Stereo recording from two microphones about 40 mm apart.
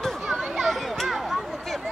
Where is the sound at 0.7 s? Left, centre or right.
Centre.